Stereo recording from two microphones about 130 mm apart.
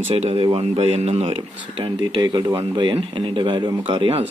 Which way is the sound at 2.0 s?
30° right (ahead or behind).